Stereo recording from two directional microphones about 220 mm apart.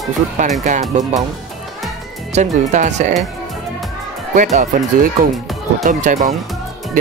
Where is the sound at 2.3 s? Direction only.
35° right (ahead or behind).